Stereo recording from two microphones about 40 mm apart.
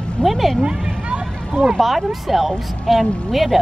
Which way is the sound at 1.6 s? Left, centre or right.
Centre.